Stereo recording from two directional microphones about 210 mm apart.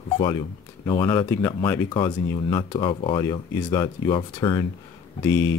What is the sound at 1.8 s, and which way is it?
Speech, 20° left (ahead or behind).